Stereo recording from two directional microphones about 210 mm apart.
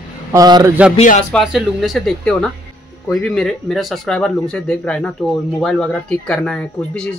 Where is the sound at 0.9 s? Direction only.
35° left (ahead or behind).